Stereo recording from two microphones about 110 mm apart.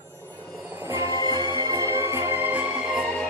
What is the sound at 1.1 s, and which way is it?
Music, 40° right (ahead or behind).